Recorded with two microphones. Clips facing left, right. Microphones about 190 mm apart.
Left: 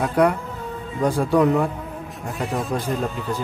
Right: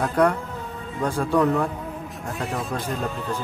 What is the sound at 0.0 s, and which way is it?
Speech, 10° left (ahead or behind).